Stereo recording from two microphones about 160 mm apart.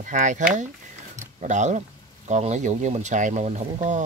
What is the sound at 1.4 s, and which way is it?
Speech, 50° right (ahead or behind).